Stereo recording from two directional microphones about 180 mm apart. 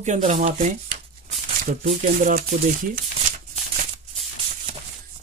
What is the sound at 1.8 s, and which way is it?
Speech, 50° right (ahead or behind).